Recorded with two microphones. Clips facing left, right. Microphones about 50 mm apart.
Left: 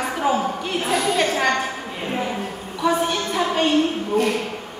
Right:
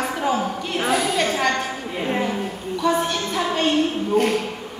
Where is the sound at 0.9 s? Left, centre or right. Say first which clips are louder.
Even; centre.